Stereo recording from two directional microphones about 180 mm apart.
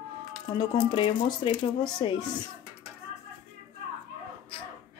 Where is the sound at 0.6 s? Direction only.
25° left (ahead or behind).